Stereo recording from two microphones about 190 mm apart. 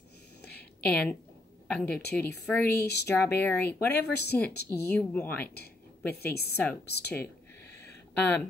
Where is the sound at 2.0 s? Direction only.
55° left (ahead or behind).